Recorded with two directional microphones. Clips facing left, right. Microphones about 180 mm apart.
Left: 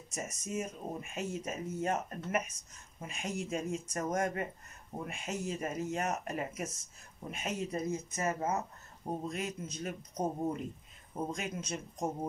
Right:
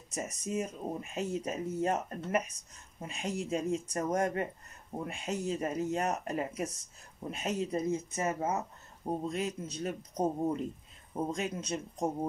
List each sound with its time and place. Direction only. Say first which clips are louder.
0.1 s speech: right 3 dB; 30° right (ahead or behind)